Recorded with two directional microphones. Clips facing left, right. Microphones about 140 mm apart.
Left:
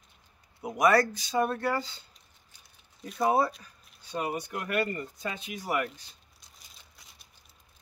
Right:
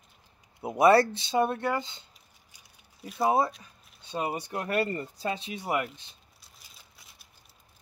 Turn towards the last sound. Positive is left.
turn(degrees=0)  # may be behind; listen again after turning